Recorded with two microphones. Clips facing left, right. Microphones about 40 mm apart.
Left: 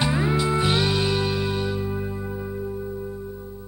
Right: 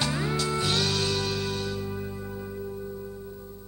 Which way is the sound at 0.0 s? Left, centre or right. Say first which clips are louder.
Left 5 dB; centre.